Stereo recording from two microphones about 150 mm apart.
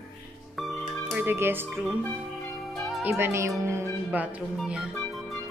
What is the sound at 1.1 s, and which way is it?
Speech, 15° right (ahead or behind).